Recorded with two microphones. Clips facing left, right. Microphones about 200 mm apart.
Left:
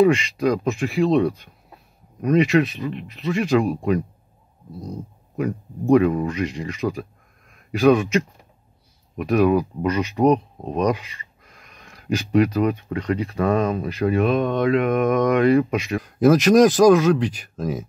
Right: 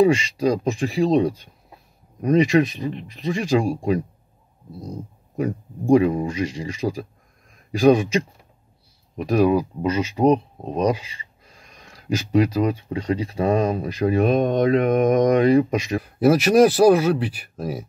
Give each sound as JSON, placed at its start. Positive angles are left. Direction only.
{"t": 0.0, "sound": "speech", "side_deg": -35}
{"t": 4.6, "sound": "speech", "side_deg": -10}
{"t": 5.4, "sound": "speech", "side_deg": -30}
{"t": 16.0, "sound": "speech", "side_deg": -10}